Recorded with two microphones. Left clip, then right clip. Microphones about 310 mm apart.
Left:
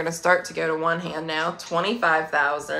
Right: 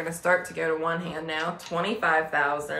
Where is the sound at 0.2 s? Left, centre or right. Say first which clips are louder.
Left 3 dB; centre.